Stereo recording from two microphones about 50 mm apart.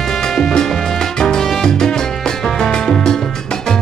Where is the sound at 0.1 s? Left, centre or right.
Centre.